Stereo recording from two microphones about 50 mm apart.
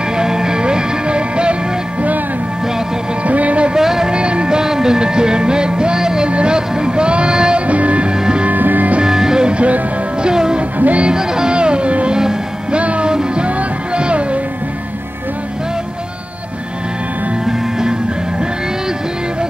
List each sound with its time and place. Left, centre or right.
0.1 s music: centre; by 2.2 s right
3.3 s music: right
3.7 s music: centre
8.5 s music: right
9.0 s music: centre
10.8 s music: right
11.1 s music: centre
17.5 s music: centre